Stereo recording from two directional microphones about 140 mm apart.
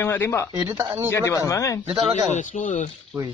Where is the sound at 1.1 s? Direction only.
20° left (ahead or behind).